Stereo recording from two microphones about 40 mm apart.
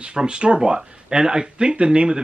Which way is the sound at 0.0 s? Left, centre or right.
Right.